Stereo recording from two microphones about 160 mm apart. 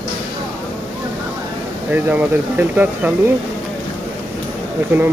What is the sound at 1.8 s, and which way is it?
Speech, 10° right (ahead or behind).